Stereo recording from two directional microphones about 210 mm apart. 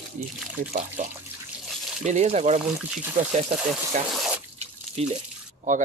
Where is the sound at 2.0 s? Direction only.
35° right (ahead or behind).